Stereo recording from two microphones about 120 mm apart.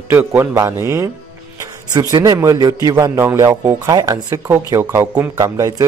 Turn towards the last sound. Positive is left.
turn(degrees=-30)  # may be behind; listen again after turning